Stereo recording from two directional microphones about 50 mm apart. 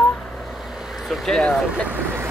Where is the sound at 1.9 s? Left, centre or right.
Right.